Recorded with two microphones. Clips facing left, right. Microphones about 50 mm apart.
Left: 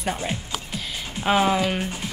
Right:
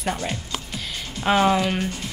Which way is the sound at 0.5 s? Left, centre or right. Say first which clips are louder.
Even; centre.